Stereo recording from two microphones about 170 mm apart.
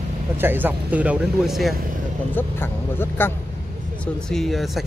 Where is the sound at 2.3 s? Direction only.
15° left (ahead or behind).